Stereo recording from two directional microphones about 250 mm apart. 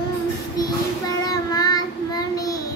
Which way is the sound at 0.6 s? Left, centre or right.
Centre.